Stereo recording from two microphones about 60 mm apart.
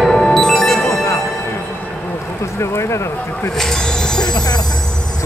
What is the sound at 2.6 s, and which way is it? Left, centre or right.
Speech, left.